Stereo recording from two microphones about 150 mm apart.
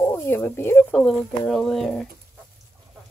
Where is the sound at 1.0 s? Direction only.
5° left (ahead or behind).